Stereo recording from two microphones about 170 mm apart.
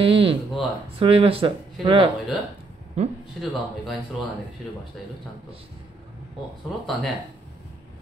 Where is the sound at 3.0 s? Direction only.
40° right (ahead or behind).